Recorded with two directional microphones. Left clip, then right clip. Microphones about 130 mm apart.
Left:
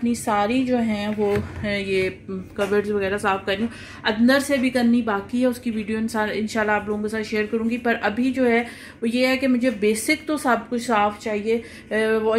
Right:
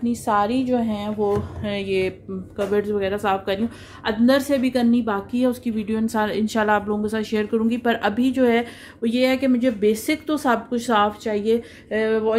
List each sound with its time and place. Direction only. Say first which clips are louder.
0.2 s a woman's voice: right 2 dB; 10° right (ahead or behind)
3.2 s a woman's voice: even; 25° right (ahead or behind)
6.1 s a woman's voice: right 1 dB; 45° right (ahead or behind); by 10.3 s 20° right (ahead or behind)
10.3 s a woman's voice: even; 35° right (ahead or behind)
11.9 s a woman's voice: even; 10° right (ahead or behind)